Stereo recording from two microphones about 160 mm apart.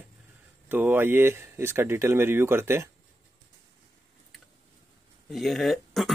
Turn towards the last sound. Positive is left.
turn(degrees=0)  # may be behind; listen again after turning